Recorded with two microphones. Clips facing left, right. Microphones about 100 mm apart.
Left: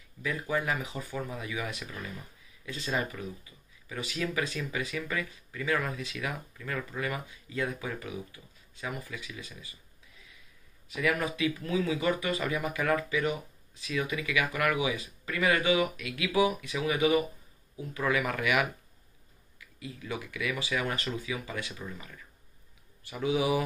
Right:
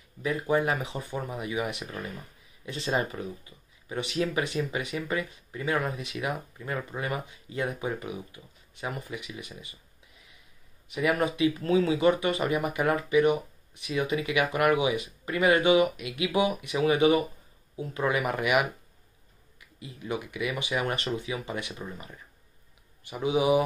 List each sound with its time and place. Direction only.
0.2 s speech: 25° right (ahead or behind)
11.0 s speech: 25° right (ahead or behind)
19.8 s speech: 25° right (ahead or behind)